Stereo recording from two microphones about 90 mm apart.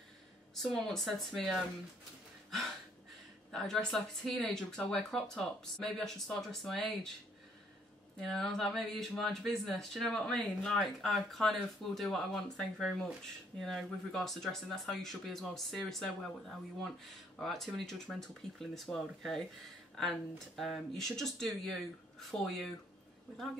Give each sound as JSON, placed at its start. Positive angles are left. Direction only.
{"t": 0.8, "sound": "speech", "side_deg": 5}
{"t": 3.5, "sound": "speech", "side_deg": 5}
{"t": 8.2, "sound": "speech", "side_deg": 0}